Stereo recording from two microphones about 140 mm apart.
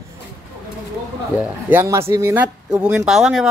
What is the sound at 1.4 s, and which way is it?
Speech, 15° right (ahead or behind).